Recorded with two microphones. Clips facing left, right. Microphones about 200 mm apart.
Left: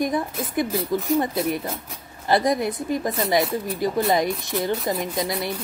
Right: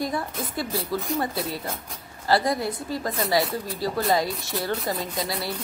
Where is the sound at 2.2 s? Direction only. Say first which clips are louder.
Left 3 dB; 20° left (ahead or behind).